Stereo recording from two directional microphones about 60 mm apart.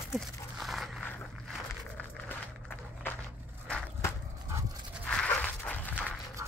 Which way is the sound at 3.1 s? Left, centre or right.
Left.